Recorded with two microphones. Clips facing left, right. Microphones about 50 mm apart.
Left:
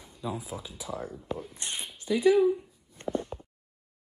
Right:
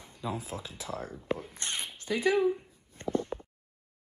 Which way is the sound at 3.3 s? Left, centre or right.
Right.